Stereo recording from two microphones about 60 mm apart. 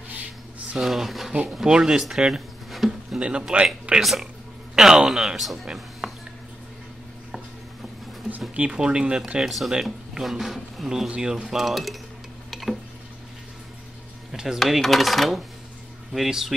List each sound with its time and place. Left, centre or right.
0.7 s speech: centre
2.7 s a sound: centre
3.2 s speech: centre
4.0 s speech: centre
5.7 s music: centre
8.5 s speech: centre
9.4 s speech: centre
12.4 s tick-tock: centre
14.3 s a sound: centre
14.6 s speech: centre